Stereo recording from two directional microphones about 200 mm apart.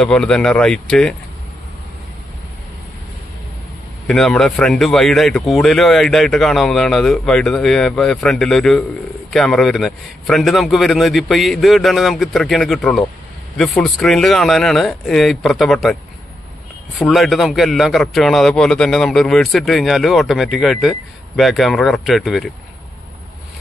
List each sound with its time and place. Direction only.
0.0 s a man's voice: 5° left (ahead or behind)
4.1 s a man's voice: 5° left (ahead or behind)
17.0 s a man's voice: centre (ahead or behind)